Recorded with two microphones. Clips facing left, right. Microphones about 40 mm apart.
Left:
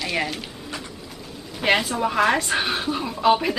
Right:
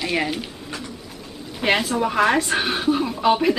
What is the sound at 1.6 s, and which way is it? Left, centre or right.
Speech, centre.